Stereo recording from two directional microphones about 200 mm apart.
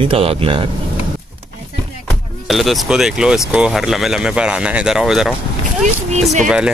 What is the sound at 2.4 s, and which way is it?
Speech, centre (ahead or behind).